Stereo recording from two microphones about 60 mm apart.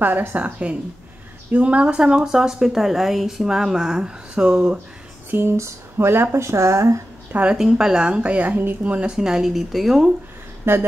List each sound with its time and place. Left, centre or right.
0.0 s speech: right
1.5 s speech: right
5.6 s speech: right
7.5 s speech: centre
9.1 s speech: centre
10.6 s speech: right